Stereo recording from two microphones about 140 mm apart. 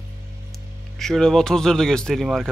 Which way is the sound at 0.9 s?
5° left (ahead or behind).